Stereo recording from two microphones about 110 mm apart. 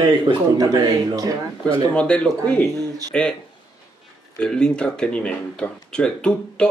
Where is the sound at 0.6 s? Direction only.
35° right (ahead or behind).